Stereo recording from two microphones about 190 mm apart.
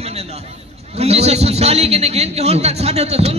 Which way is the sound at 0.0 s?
35° right (ahead or behind).